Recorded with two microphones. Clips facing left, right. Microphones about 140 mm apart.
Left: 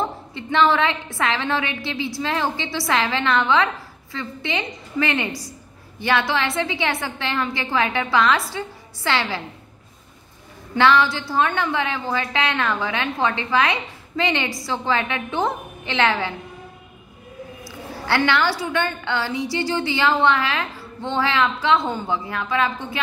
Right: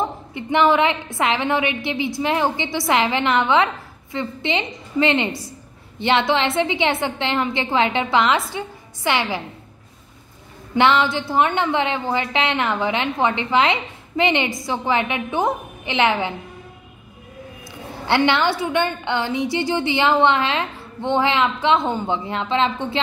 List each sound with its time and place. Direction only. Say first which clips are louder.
0.0 s a woman's voice: right 2 dB; 15° right (ahead or behind)
10.8 s a woman's voice: even; 20° right (ahead or behind)
17.6 s a woman's voice: right 3 dB; 20° right (ahead or behind)